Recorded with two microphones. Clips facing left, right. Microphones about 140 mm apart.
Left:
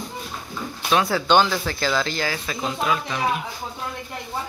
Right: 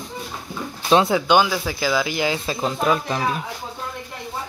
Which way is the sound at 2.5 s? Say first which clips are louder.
Right 2 dB; 35° right (ahead or behind).